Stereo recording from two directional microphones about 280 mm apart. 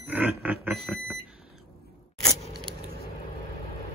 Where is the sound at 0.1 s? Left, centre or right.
Centre.